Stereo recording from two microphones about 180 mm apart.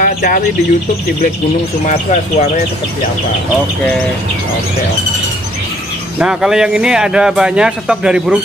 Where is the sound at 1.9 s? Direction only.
40° left (ahead or behind).